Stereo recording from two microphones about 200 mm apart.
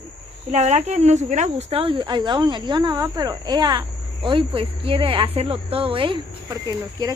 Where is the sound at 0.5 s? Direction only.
35° right (ahead or behind).